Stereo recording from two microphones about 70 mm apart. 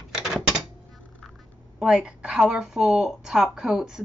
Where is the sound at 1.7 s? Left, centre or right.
Centre.